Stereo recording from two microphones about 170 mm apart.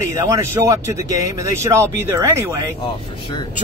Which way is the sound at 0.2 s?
20° right (ahead or behind).